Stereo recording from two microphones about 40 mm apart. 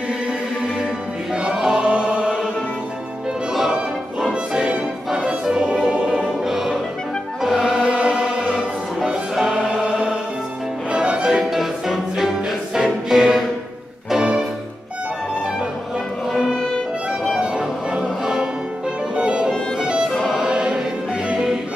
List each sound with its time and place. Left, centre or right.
1.3 s choir: centre
4.3 s music: centre
6.4 s music: centre
7.5 s chant: centre
9.3 s music: centre
9.6 s music: centre
11.2 s music: centre
16.6 s music: centre
17.4 s music: right
20.1 s music: centre
20.3 s choir: centre